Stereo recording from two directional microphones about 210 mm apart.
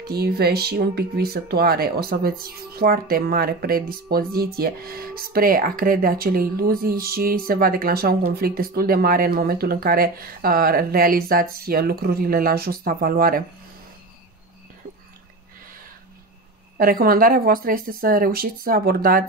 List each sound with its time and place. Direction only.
0.1 s speech: 50° right (ahead or behind)
16.7 s speech: 45° right (ahead or behind)